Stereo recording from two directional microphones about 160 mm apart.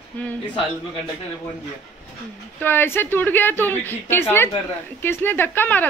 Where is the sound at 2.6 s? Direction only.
15° left (ahead or behind).